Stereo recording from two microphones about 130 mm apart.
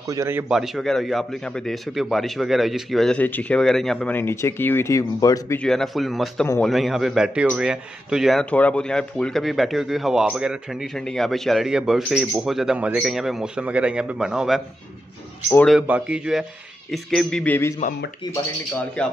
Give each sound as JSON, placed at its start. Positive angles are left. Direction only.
{"t": 0.0, "sound": "a man's voice", "side_deg": -25}
{"t": 0.5, "sound": "a man's voice", "side_deg": -5}
{"t": 3.2, "sound": "speech", "side_deg": 15}
{"t": 4.1, "sound": "speech", "side_deg": 20}
{"t": 5.6, "sound": "a man's voice", "side_deg": 5}
{"t": 15.9, "sound": "a man's voice", "side_deg": -10}
{"t": 17.8, "sound": "speech", "side_deg": 70}
{"t": 18.3, "sound": "speech", "side_deg": 30}
{"t": 19.0, "sound": "speech", "side_deg": 10}